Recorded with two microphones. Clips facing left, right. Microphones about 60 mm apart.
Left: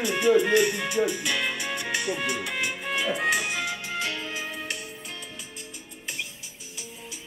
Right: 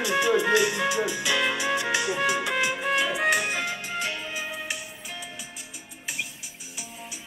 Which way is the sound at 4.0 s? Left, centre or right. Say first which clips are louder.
Even; centre.